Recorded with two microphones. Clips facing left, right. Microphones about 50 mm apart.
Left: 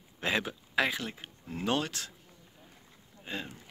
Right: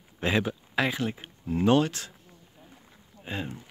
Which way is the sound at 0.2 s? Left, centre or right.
Centre.